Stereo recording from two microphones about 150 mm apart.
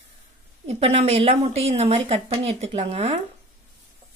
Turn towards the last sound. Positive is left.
turn(degrees=-45)  # may be behind; listen again after turning